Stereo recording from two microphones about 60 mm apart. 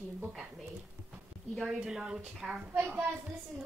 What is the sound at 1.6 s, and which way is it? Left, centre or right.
Speech, centre.